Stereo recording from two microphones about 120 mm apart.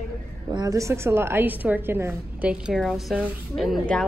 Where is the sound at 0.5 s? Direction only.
30° right (ahead or behind).